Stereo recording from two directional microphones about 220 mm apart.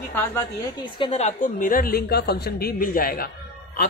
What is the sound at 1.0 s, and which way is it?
A woman's voice, 30° left (ahead or behind).